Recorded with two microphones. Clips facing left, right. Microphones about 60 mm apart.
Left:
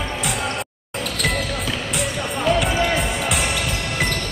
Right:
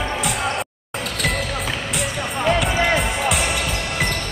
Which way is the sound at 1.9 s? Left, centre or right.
Centre.